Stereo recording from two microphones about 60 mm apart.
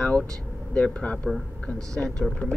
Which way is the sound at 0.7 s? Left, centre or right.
Left.